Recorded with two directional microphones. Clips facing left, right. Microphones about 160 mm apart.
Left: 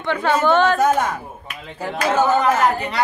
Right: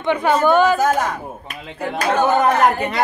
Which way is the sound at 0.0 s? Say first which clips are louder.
Right 2 dB; 15° right (ahead or behind).